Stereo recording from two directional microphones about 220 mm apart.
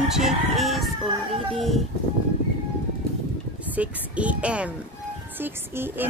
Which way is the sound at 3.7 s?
5° right (ahead or behind).